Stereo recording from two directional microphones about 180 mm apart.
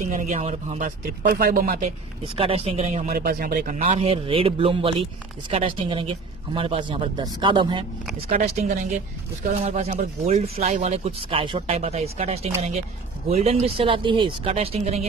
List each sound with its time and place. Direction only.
0.0 s speech: 45° right (ahead or behind)
2.3 s speech: 35° right (ahead or behind)
3.1 s speech: 55° right (ahead or behind); by 7.8 s 25° right (ahead or behind)
8.3 s speech: 40° right (ahead or behind)